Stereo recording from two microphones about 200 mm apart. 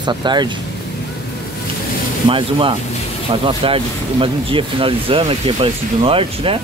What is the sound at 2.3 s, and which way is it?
Speech, 25° right (ahead or behind).